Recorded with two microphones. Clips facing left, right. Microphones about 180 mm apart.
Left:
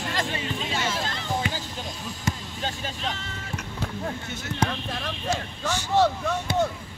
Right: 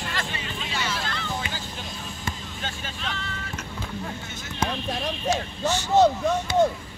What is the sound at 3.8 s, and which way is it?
Basketball bounce, 65° left (ahead or behind).